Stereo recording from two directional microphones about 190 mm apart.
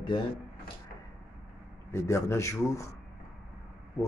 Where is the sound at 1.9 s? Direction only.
15° left (ahead or behind).